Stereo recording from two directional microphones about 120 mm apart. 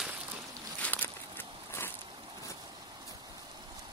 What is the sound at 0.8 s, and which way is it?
Walk, 15° left (ahead or behind).